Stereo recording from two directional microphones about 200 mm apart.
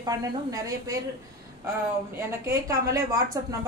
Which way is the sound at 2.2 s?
15° right (ahead or behind).